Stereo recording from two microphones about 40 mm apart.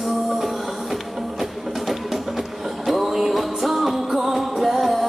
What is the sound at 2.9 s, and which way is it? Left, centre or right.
Music, centre.